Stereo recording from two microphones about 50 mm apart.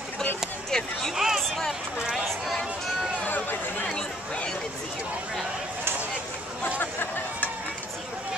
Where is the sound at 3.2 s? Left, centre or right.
Left.